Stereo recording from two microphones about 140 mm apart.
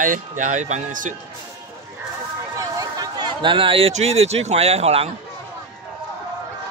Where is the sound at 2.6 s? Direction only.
25° right (ahead or behind).